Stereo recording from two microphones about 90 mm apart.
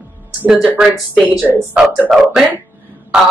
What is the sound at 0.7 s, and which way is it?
Speech, 10° right (ahead or behind).